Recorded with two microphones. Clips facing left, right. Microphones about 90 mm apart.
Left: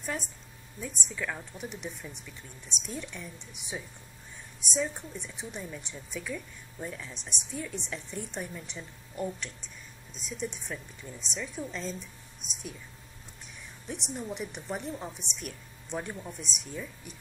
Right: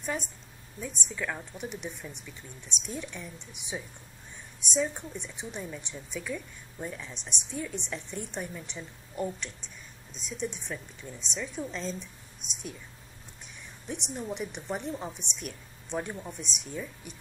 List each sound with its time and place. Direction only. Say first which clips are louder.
0.0 s a woman's voice: right 2 dB; centre (ahead or behind)
13.8 s a woman's voice: right 1 dB; centre (ahead or behind)